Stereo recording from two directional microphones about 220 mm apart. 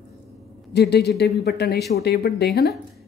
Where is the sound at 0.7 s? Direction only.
50° left (ahead or behind).